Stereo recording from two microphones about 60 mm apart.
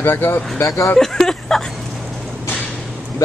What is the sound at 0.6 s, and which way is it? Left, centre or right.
Speech, left.